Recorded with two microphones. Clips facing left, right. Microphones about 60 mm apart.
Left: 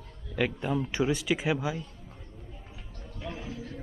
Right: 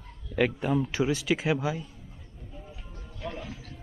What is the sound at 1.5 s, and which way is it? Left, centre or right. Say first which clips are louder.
Speech: right 2 dB; centre.